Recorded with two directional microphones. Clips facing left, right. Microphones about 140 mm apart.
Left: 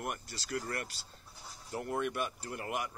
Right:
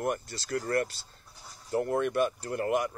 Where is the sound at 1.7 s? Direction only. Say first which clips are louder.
Right 8 dB; 40° right (ahead or behind).